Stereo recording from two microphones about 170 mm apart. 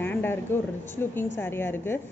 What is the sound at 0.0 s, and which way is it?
A woman's voice, 10° left (ahead or behind).